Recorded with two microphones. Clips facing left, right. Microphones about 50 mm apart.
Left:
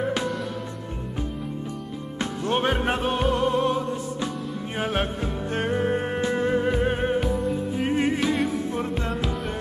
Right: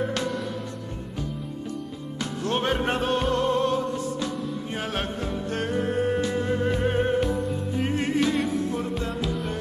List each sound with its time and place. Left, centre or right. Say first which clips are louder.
2.1 s music: left 2 dB; centre
8.7 s music: left 1 dB; left
9.1 s music: left 1 dB; centre